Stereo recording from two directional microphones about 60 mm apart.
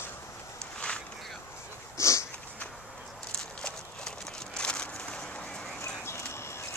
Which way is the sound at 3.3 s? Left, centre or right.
Centre.